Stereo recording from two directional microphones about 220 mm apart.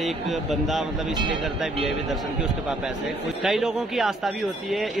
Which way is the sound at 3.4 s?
Centre (ahead or behind).